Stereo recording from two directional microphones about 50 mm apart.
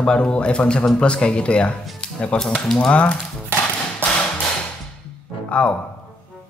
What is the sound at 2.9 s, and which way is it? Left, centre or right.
Speech, left.